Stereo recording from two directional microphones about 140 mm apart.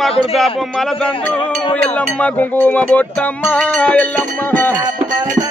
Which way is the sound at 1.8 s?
10° left (ahead or behind).